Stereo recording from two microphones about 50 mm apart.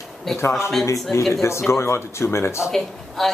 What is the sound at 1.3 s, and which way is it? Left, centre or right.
Speech, left.